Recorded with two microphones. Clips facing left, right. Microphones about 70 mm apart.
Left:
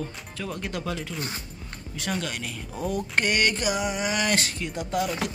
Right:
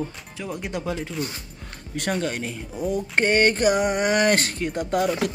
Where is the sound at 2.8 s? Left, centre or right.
Right.